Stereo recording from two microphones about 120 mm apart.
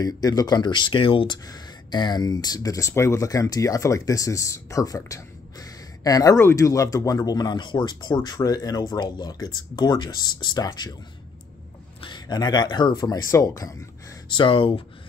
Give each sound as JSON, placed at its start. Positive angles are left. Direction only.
{"t": 0.0, "sound": "speech", "side_deg": 35}
{"t": 12.0, "sound": "speech", "side_deg": 35}
{"t": 14.3, "sound": "speech", "side_deg": 45}